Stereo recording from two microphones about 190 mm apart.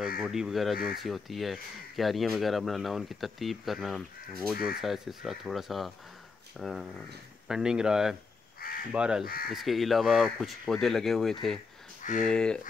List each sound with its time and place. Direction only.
0.2 s speech: centre (ahead or behind)
0.7 s speech: 50° left (ahead or behind)
1.0 s speech: centre (ahead or behind)
8.5 s crow: 50° left (ahead or behind)
8.9 s speech: 5° right (ahead or behind)
9.2 s speech: 50° left (ahead or behind)
9.5 s speech: centre (ahead or behind)
12.0 s speech: 40° left (ahead or behind)
12.3 s speech: 5° left (ahead or behind)